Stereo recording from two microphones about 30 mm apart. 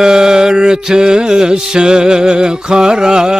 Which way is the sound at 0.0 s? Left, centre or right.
Right.